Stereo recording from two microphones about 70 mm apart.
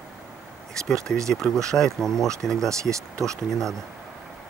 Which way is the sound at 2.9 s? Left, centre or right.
Right.